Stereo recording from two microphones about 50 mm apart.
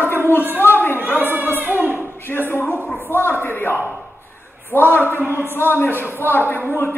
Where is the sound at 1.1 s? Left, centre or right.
Right.